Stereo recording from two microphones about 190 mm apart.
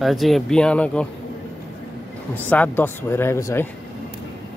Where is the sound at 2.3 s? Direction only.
10° left (ahead or behind).